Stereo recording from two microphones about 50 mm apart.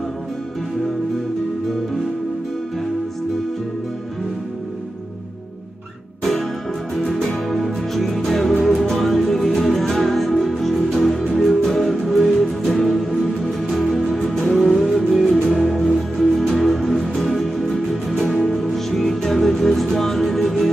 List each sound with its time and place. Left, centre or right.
7.0 s music: centre
15.2 s music: centre
15.5 s music: centre